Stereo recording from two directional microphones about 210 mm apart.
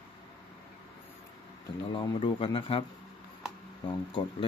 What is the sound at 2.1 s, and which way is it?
Speech, 25° left (ahead or behind).